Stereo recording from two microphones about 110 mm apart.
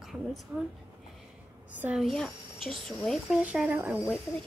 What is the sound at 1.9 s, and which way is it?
A woman's voice, centre (ahead or behind).